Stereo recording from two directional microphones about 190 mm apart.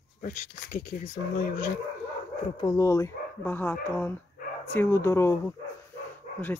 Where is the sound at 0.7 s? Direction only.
45° left (ahead or behind).